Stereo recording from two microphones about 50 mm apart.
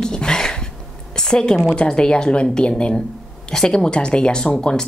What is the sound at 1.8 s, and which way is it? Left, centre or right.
A woman's voice, centre.